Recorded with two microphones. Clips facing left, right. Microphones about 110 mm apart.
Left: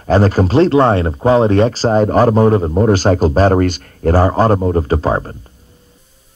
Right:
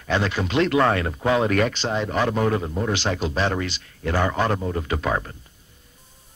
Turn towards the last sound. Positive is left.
turn(degrees=40)  # may be behind; listen again after turning